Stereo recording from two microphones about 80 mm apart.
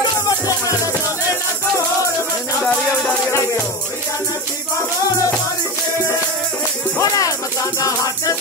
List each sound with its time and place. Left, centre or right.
2.6 s music: centre
7.0 s music: left